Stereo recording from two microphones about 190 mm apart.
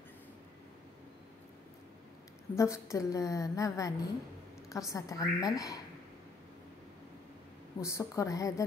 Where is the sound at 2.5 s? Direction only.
15° left (ahead or behind).